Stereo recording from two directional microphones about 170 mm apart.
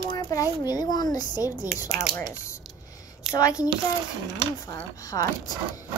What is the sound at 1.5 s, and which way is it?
Speech, 10° right (ahead or behind).